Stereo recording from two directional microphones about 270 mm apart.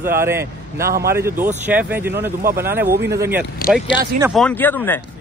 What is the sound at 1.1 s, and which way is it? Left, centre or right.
A man's voice, centre.